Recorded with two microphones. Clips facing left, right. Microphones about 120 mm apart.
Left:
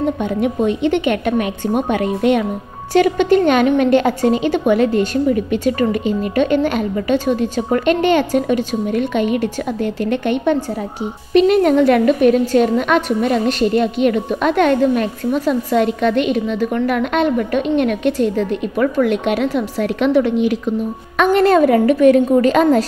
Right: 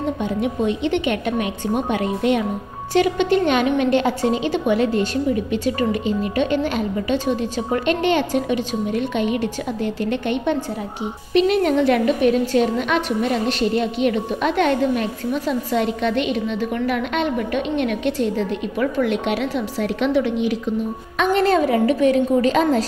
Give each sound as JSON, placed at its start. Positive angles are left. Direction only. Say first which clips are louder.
{"t": 0.2, "sound": "a woman's voice", "louder": "left 4 dB", "side_deg": 50}
{"t": 2.9, "sound": "a woman's voice", "louder": "left 4 dB", "side_deg": 50}